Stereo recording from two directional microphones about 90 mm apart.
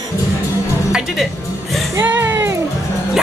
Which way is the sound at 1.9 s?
25° right (ahead or behind).